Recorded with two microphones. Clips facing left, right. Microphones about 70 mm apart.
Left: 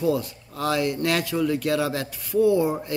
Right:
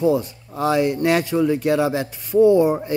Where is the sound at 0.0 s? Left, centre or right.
Right.